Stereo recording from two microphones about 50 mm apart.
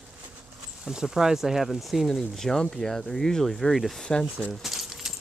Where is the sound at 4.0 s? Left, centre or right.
Centre.